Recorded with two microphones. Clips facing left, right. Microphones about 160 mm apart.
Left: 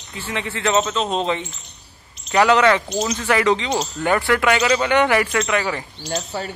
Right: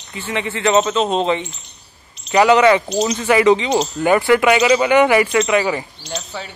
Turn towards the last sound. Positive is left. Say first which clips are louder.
# left 3 dB
turn(degrees=50)  # may be behind; listen again after turning